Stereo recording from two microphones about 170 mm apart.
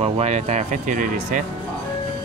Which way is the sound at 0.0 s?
40° right (ahead or behind).